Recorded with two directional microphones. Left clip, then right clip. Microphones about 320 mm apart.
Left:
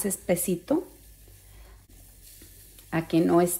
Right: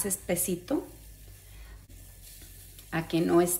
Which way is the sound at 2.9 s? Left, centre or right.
Centre.